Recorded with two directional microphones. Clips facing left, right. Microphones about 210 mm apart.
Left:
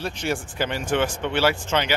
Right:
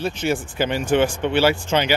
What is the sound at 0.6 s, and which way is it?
Speech, 30° right (ahead or behind).